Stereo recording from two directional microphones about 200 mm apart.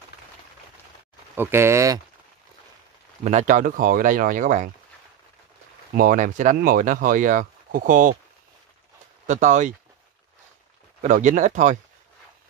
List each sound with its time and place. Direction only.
1.3 s speech: 10° right (ahead or behind)
3.3 s speech: 40° right (ahead or behind)
5.9 s speech: 45° right (ahead or behind)
9.3 s speech: 35° right (ahead or behind)
11.0 s speech: 40° right (ahead or behind)